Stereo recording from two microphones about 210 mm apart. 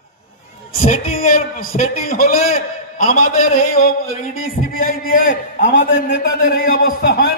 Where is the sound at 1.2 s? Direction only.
40° left (ahead or behind).